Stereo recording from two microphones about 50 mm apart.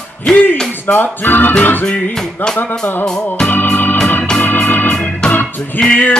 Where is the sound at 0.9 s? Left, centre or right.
Left.